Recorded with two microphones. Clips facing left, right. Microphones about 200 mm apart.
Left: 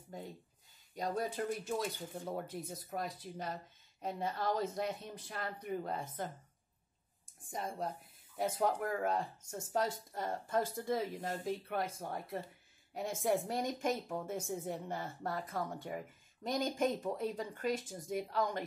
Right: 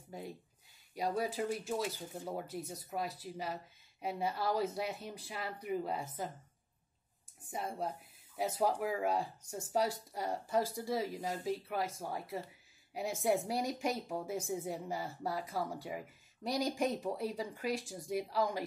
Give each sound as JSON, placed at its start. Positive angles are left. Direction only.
{"t": 0.9, "sound": "speech", "side_deg": -5}
{"t": 7.5, "sound": "speech", "side_deg": -5}